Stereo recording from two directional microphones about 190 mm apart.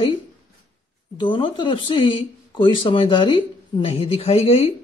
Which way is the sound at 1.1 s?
25° left (ahead or behind).